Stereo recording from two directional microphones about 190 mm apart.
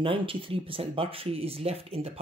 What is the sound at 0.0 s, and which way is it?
Speech, 30° right (ahead or behind).